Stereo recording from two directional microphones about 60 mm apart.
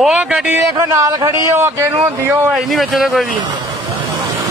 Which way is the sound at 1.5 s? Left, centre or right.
Right.